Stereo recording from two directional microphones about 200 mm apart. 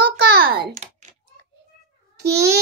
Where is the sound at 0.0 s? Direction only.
50° right (ahead or behind).